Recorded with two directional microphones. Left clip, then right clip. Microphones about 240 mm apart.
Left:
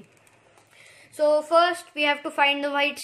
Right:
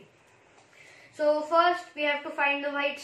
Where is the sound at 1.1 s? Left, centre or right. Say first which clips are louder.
Left 4 dB; left.